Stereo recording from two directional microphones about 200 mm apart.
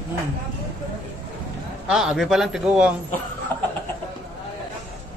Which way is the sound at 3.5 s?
10° left (ahead or behind).